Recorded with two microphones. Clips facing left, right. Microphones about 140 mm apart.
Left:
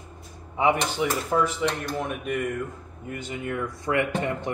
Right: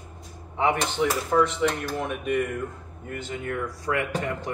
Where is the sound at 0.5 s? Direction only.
10° left (ahead or behind).